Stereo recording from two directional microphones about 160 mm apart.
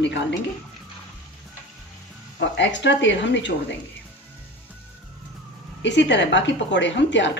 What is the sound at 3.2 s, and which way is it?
Speech, 90° left.